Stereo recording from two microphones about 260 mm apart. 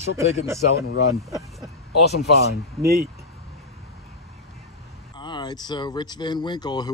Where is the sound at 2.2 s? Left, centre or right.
Left.